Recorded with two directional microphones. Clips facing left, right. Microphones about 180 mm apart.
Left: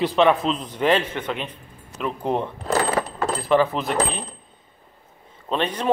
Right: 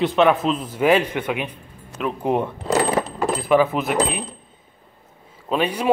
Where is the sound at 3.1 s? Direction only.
10° right (ahead or behind).